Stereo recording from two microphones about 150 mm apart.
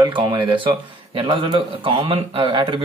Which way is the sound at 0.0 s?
30° right (ahead or behind).